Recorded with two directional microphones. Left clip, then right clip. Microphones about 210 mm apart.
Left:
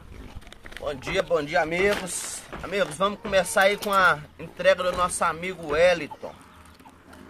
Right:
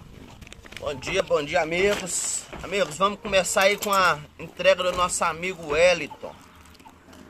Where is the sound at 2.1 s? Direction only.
25° left (ahead or behind).